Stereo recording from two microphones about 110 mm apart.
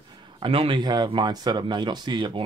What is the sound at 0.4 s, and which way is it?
Speech, 50° right (ahead or behind).